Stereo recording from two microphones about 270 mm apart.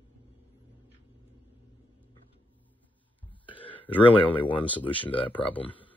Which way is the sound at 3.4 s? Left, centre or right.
Centre.